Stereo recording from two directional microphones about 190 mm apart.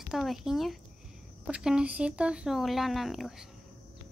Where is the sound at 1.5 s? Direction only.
5° right (ahead or behind).